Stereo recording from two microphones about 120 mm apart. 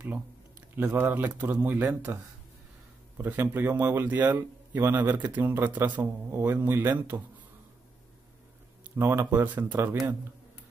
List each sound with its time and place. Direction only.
0.7 s a man's voice: 20° right (ahead or behind)
3.2 s a man's voice: 15° right (ahead or behind)
8.9 s speech: 20° right (ahead or behind)